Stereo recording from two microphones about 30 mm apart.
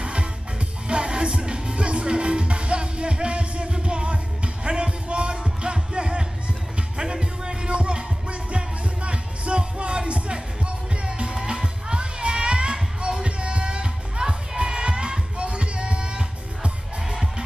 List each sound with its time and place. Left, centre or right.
0.0 s music: right